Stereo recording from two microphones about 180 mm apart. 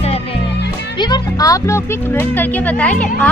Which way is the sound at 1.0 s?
20° left (ahead or behind).